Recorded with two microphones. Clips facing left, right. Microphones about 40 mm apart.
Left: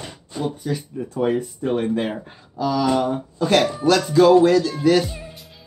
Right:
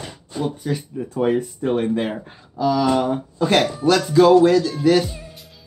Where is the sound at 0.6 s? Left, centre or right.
Right.